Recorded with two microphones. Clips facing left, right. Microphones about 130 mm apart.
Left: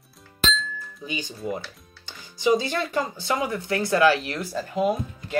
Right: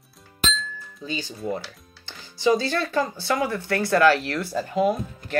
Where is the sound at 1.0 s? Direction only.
15° left (ahead or behind).